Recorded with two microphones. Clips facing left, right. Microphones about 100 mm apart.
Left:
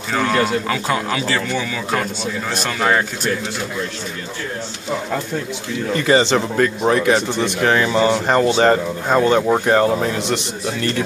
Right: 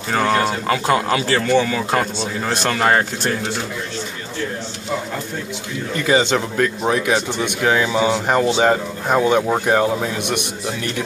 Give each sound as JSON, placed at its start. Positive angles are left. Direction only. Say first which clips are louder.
{"t": 0.3, "sound": "speech", "louder": "left 1 dB", "side_deg": -40}
{"t": 5.9, "sound": "speech", "louder": "left 2 dB", "side_deg": 0}
{"t": 10.2, "sound": "a man's voice", "louder": "left 1 dB", "side_deg": -15}